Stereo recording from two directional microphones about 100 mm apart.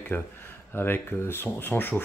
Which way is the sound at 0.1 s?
20° left (ahead or behind).